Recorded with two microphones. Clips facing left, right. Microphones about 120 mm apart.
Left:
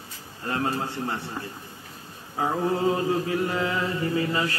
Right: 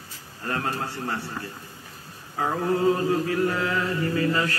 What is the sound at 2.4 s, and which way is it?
Mantra, 20° left (ahead or behind).